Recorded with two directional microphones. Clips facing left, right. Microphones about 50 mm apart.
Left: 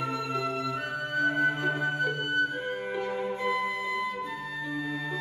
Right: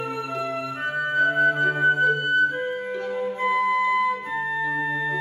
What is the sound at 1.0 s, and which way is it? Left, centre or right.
Flute, right.